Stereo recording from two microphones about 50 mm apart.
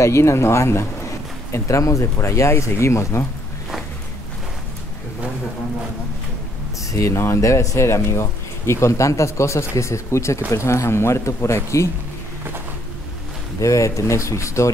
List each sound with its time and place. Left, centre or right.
0.0 s speech: left
1.5 s speech: left
6.9 s speech: left
13.6 s speech: left